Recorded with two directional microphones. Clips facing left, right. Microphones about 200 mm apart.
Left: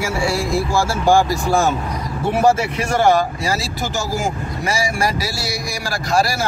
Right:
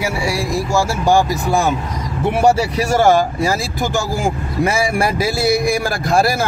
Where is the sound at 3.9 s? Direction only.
55° right (ahead or behind).